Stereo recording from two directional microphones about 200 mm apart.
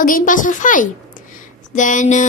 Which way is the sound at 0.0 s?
40° left (ahead or behind).